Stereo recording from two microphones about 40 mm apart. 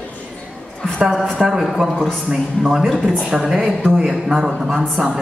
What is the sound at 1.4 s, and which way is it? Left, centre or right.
Speech, centre.